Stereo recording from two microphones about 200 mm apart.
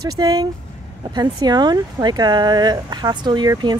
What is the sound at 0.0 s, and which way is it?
Speech, 20° right (ahead or behind).